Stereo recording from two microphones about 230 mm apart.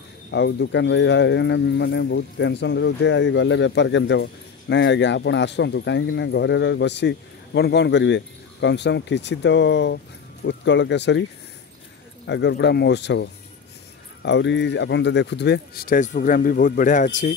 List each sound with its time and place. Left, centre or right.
0.3 s speech: left
12.3 s speech: left